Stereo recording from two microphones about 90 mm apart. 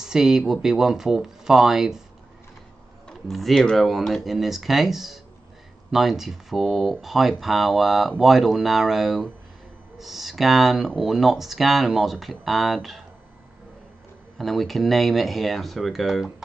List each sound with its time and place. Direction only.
0.0 s speech: 5° right (ahead or behind)
3.1 s speech: centre (ahead or behind)
14.4 s speech: centre (ahead or behind)